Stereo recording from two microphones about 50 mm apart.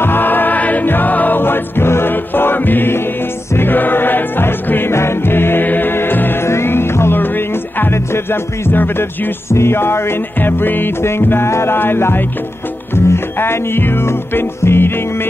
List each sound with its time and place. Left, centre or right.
0.0 s music: left
4.9 s music: left
6.4 s music: left
7.2 s music: left
7.9 s music: left
9.5 s music: left
10.4 s music: left